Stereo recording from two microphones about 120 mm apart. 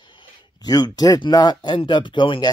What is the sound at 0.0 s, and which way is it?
Speech, 45° left (ahead or behind).